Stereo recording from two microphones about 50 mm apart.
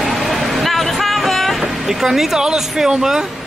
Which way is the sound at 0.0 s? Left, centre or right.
Centre.